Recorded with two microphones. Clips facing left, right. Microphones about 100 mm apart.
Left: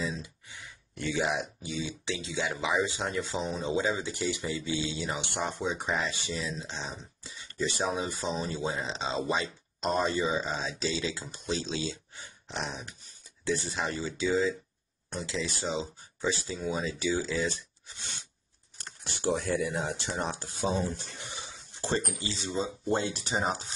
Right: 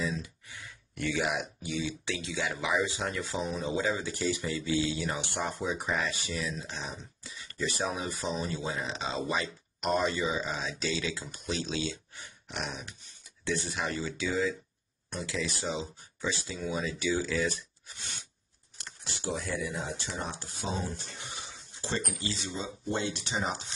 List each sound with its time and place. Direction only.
0.0 s speech: 25° left (ahead or behind)
18.9 s speech: 55° left (ahead or behind)
20.4 s speech: centre (ahead or behind)
21.8 s speech: 35° left (ahead or behind)
22.6 s speech: 40° left (ahead or behind)